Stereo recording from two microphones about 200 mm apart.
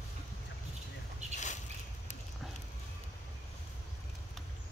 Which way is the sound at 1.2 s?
35° right (ahead or behind).